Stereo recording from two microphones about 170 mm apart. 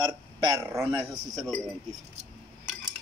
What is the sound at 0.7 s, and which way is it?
Speech, 10° right (ahead or behind).